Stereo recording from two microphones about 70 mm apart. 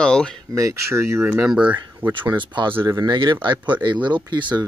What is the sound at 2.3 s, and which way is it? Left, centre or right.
Speech, right.